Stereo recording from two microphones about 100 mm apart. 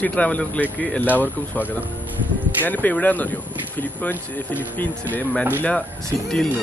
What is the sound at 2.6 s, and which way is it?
Speech, 15° left (ahead or behind).